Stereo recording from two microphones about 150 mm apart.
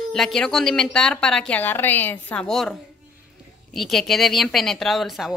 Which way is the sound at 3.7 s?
Centre (ahead or behind).